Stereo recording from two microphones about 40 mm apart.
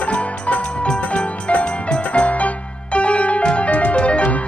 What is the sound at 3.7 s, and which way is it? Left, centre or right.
Music, left.